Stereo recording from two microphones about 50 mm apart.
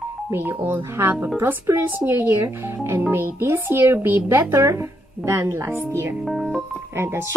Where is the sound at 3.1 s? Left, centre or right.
Right.